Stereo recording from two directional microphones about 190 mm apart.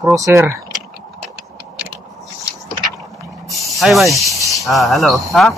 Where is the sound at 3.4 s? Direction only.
Centre (ahead or behind).